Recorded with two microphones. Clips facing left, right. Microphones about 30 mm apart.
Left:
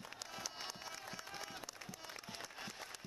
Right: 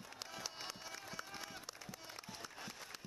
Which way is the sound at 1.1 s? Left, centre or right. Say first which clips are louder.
Even; centre.